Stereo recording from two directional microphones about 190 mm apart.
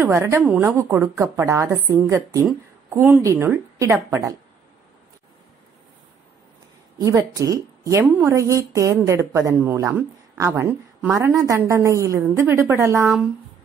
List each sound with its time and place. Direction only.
0.0 s a woman's voice: 15° right (ahead or behind)
7.0 s a woman's voice: 15° right (ahead or behind)